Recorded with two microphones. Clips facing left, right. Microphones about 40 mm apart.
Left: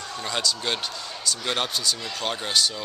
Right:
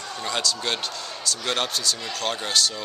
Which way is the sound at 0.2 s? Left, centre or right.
Centre.